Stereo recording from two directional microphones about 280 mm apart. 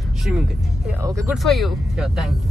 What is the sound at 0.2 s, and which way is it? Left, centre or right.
Speech, centre.